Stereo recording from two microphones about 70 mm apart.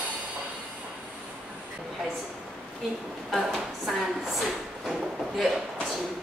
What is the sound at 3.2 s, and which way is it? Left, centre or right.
Drawer open or close, centre.